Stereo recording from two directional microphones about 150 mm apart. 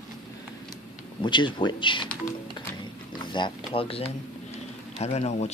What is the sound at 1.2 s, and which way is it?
Speech, 30° left (ahead or behind).